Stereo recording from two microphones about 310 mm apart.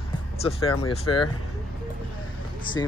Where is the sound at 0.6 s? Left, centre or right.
Left.